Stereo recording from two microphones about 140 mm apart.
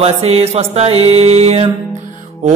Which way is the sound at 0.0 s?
45° right (ahead or behind).